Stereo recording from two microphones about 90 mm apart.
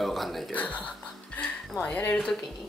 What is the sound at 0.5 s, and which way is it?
Speech, 15° left (ahead or behind).